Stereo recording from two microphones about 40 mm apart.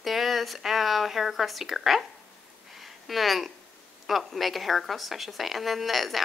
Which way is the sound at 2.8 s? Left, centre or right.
Centre.